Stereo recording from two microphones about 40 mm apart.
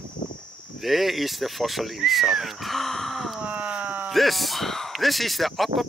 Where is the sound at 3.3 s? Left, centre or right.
Right.